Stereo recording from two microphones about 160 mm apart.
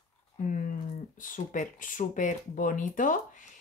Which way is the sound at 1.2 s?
55° left (ahead or behind).